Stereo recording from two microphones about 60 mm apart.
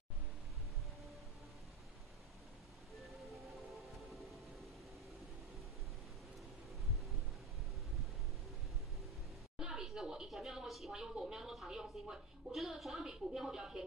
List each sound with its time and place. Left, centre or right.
3.0 s music: centre
9.6 s speech: centre